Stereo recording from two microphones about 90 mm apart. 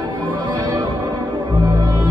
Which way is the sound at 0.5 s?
50° right (ahead or behind).